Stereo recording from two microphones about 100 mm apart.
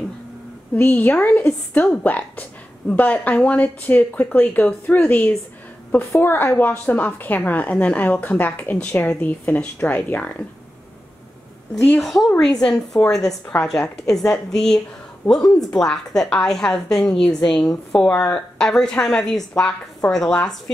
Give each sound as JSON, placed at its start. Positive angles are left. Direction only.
{"t": 0.7, "sound": "a woman's voice", "side_deg": 20}
{"t": 11.7, "sound": "a woman's voice", "side_deg": 10}
{"t": 12.0, "sound": "a woman's voice", "side_deg": 0}